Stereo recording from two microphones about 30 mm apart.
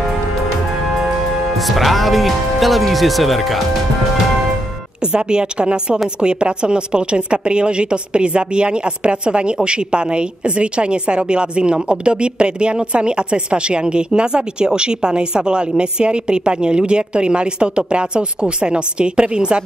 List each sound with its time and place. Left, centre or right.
1.8 s speech: centre
5.0 s a woman's voice: right